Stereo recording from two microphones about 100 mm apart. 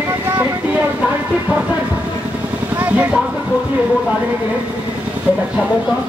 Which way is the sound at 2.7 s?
15° right (ahead or behind).